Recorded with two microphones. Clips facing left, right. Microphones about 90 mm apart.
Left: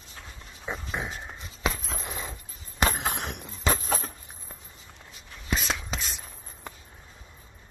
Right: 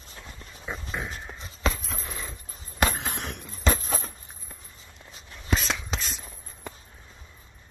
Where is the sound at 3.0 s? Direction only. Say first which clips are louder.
Left 3 dB; 65° left (ahead or behind).